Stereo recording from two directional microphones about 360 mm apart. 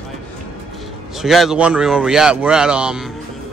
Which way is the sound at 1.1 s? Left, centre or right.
Centre.